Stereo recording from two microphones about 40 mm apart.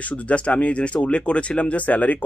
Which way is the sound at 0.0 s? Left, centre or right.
Left.